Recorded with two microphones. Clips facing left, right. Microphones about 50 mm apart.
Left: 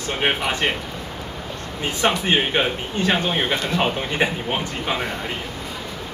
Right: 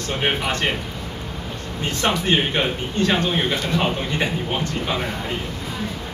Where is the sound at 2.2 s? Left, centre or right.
Centre.